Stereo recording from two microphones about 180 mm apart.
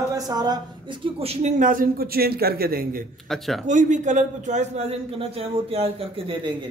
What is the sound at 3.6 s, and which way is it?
A man's voice, 45° right (ahead or behind).